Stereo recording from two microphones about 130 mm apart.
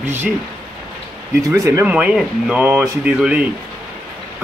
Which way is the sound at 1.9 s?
10° right (ahead or behind).